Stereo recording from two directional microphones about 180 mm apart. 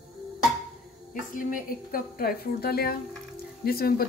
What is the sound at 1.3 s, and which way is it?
Speech, 50° left (ahead or behind).